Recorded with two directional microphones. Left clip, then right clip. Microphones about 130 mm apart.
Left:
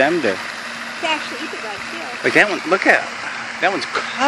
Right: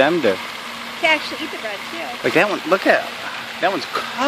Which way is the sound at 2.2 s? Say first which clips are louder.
Left 2 dB; 15° right (ahead or behind).